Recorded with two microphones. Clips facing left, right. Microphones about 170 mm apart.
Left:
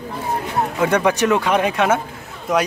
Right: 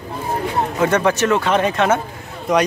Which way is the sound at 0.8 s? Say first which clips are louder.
Even; 10° left (ahead or behind).